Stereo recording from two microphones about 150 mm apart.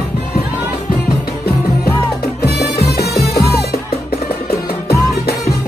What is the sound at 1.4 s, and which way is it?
Music, 90° left.